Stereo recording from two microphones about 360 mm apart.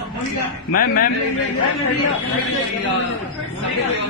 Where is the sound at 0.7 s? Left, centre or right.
Left.